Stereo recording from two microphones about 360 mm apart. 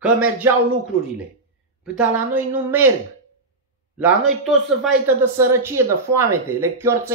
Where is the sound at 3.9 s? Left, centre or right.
Centre.